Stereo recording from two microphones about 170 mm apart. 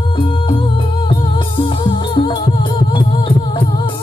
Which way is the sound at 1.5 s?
30° left (ahead or behind).